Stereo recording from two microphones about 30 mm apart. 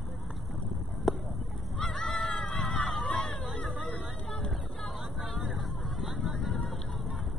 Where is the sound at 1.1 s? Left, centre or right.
Centre.